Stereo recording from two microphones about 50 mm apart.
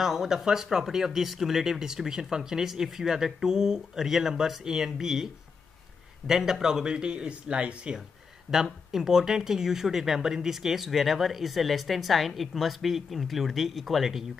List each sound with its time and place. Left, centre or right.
0.0 s speech: centre
8.6 s speech: centre